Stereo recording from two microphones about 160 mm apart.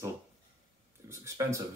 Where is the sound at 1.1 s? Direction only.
15° right (ahead or behind).